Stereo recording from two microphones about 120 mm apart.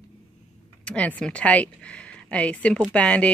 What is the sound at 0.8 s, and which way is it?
A woman's voice, 10° left (ahead or behind).